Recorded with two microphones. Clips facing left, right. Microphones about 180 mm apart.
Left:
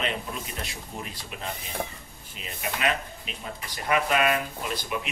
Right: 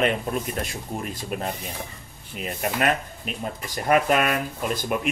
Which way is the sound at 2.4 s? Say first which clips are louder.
Right 6 dB; 50° right (ahead or behind).